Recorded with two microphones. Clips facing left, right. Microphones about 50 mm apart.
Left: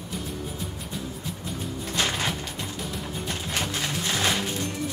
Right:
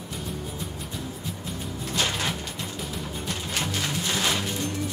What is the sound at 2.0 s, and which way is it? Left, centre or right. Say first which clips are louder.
Mechanisms: left 1 dB; centre.